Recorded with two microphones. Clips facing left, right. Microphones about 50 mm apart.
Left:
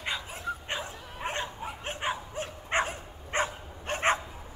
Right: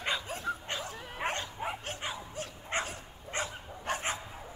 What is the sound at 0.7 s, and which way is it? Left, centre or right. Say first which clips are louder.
Bow-wow: left 3 dB; left.